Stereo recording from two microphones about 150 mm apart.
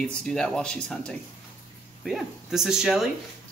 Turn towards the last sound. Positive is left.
turn(degrees=-5)  # may be behind; listen again after turning